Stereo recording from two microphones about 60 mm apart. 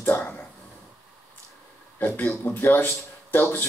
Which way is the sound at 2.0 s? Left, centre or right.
Left.